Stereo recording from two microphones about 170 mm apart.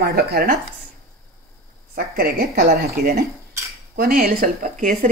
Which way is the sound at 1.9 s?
65° right (ahead or behind).